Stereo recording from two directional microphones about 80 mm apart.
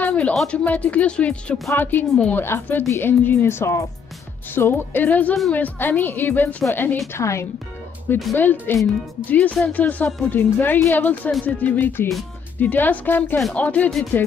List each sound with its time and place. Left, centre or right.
0.0 s a sound: centre
0.3 s speech: centre
0.7 s speech: centre
2.4 s a woman's voice: left
7.2 s a woman's voice: left
8.4 s speech: left